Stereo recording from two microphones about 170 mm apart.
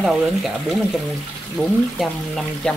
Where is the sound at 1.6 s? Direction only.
10° left (ahead or behind).